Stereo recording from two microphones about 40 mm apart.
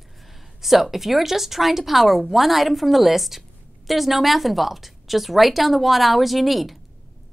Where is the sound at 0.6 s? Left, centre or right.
Centre.